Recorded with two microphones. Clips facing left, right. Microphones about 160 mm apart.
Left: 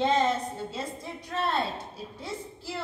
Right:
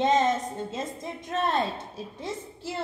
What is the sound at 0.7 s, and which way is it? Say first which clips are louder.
Speech: right 2 dB; 45° right (ahead or behind).